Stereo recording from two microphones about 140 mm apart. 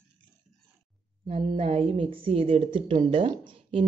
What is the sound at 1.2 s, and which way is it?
A woman's voice, 40° right (ahead or behind).